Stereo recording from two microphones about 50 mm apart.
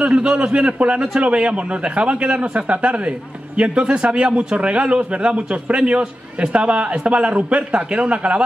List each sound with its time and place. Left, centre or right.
0.0 s a man's voice: right